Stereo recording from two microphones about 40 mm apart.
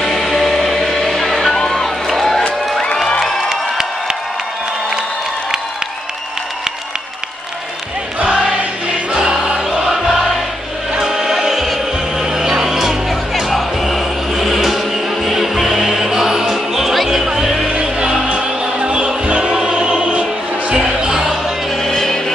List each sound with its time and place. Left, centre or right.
0.0 s music: centre
8.2 s music: right
9.2 s music: centre
11.0 s music: centre
12.2 s music: centre
17.6 s music: right
20.1 s music: right
20.7 s music: centre
21.8 s music: centre